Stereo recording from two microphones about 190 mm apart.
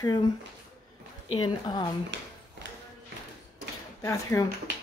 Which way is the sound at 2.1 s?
70° right (ahead or behind).